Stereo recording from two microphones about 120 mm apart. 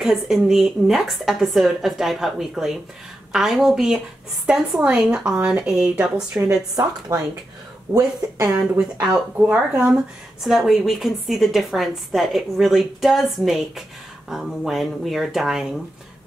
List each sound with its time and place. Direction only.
0.0 s a woman's voice: centre (ahead or behind)
6.7 s speech: 30° right (ahead or behind)
8.7 s a woman's voice: 10° right (ahead or behind)